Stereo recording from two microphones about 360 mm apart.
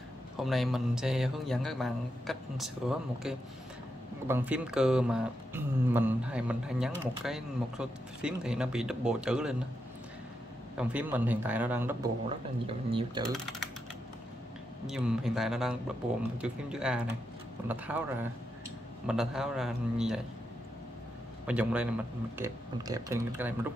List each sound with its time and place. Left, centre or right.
0.4 s speech: centre
10.8 s speech: centre
14.9 s speech: centre
19.0 s speech: centre
21.5 s speech: centre